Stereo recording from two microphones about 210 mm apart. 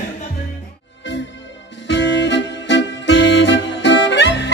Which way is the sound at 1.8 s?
60° left (ahead or behind).